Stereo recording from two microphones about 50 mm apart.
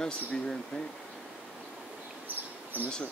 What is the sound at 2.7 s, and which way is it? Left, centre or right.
Speech, right.